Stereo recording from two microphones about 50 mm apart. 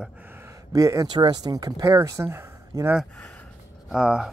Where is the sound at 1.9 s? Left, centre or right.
Right.